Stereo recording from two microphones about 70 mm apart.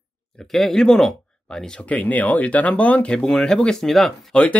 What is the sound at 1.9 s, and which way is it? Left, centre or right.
Speech, left.